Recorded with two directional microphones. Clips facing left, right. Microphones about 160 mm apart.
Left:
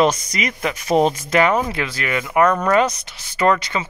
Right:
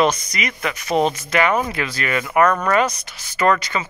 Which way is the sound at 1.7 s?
15° left (ahead or behind).